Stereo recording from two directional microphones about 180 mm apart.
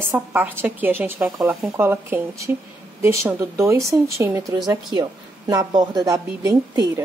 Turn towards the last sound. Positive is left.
turn(degrees=-20)  # may be behind; listen again after turning